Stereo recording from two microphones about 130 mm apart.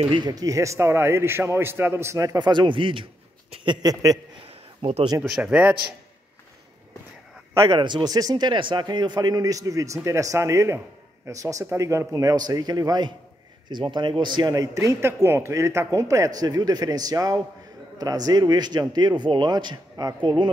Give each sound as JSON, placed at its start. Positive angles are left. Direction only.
{"t": 0.0, "sound": "speech", "side_deg": -35}
{"t": 3.8, "sound": "speech", "side_deg": -30}
{"t": 4.4, "sound": "a sound", "side_deg": -50}
{"t": 5.4, "sound": "a man's voice", "side_deg": -10}
{"t": 7.7, "sound": "a man's voice", "side_deg": -35}